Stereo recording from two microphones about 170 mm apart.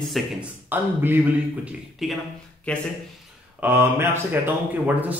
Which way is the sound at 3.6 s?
10° right (ahead or behind).